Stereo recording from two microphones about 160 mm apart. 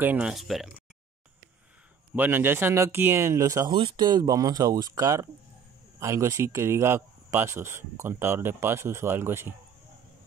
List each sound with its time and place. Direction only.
0.0 s speech: 10° right (ahead or behind)
2.1 s speech: 10° right (ahead or behind)